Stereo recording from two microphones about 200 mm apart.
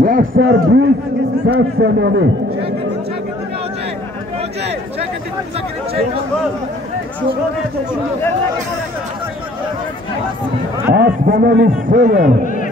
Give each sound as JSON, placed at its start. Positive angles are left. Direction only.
{"t": 0.0, "sound": "a man's voice", "side_deg": -45}
{"t": 11.0, "sound": "speech", "side_deg": -50}